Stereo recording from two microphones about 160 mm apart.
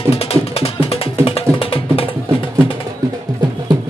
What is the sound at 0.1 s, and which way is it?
Music, 40° left (ahead or behind).